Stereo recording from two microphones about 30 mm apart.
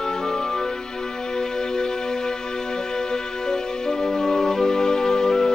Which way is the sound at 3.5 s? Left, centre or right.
Centre.